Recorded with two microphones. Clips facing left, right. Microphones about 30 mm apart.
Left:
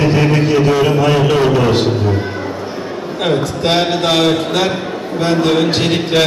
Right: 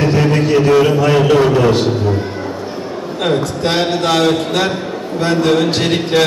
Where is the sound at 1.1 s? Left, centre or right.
Centre.